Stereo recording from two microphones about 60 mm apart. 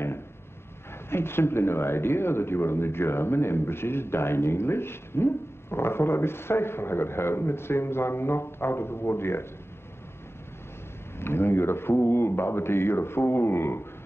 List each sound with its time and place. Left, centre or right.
1.1 s speech: left
11.1 s speech: left